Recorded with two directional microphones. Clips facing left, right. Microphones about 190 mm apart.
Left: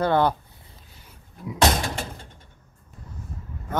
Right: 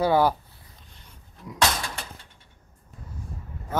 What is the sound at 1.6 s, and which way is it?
Door, 35° left (ahead or behind).